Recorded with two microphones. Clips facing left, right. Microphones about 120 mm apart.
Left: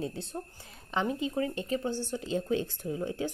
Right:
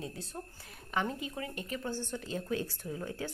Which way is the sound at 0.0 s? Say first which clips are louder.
Left 6 dB; 25° left (ahead or behind).